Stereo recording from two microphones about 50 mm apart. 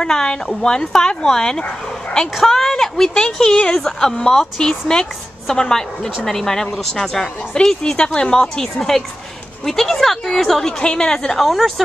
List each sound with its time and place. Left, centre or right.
0.0 s a woman's voice: centre
10.8 s speech: centre
11.3 s a woman's voice: centre